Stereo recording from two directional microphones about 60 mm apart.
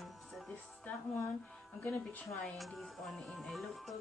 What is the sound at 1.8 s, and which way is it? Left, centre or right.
Speech, left.